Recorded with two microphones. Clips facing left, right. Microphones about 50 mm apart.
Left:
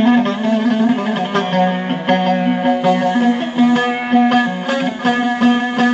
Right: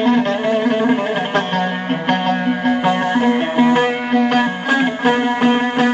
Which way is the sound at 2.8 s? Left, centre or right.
Right.